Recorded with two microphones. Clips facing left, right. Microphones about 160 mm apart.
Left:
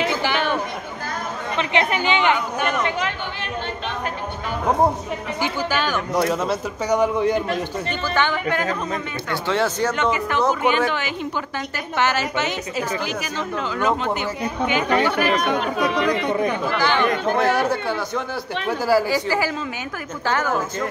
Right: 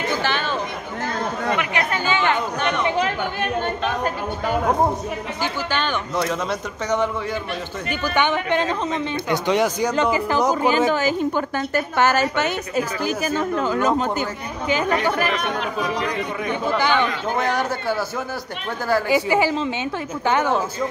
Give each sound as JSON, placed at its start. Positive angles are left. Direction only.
{"t": 0.2, "sound": "chatter", "side_deg": 15}
{"t": 1.6, "sound": "chatter", "side_deg": 25}
{"t": 5.4, "sound": "speech", "side_deg": 5}
{"t": 8.1, "sound": "speech", "side_deg": -20}
{"t": 10.5, "sound": "a woman's voice", "side_deg": -35}
{"t": 15.8, "sound": "speech", "side_deg": 65}
{"t": 16.6, "sound": "speech", "side_deg": -20}
{"t": 17.4, "sound": "a man's voice", "side_deg": 0}
{"t": 19.0, "sound": "speech", "side_deg": -20}